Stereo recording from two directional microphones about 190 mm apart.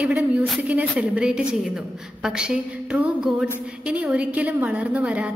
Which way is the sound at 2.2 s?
5° right (ahead or behind).